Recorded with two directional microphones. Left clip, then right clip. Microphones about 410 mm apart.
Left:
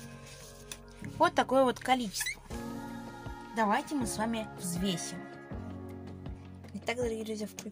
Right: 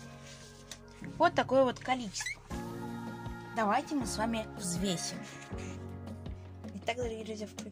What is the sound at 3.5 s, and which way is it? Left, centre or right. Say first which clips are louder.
A woman's voice: left 1 dB; right.